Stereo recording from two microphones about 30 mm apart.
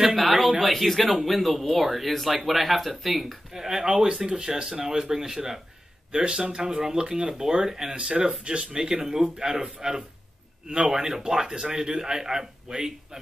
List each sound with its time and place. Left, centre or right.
0.1 s a sound: centre
0.6 s speech: centre
3.5 s speech: centre
6.1 s speech: right
8.2 s speech: right
9.0 s speech: centre